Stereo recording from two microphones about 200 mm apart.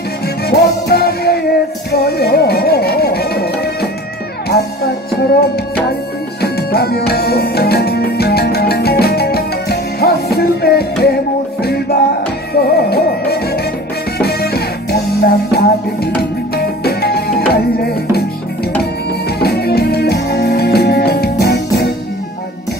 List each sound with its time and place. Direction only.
0.5 s music: 55° left (ahead or behind)
6.4 s music: 50° left (ahead or behind)
19.2 s music: 50° left (ahead or behind)